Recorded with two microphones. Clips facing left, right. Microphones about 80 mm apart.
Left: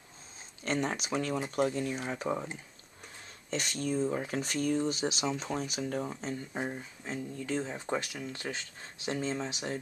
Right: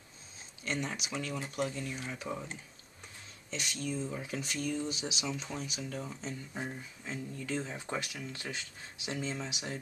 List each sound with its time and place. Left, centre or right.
0.7 s speech: left
3.4 s speech: left